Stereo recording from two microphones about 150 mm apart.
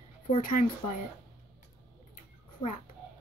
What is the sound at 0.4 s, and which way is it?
Speech, 65° left (ahead or behind).